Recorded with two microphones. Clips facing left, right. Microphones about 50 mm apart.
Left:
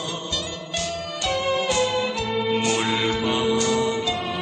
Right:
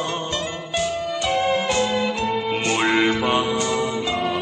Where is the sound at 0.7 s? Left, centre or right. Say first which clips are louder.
Right 6 dB; centre.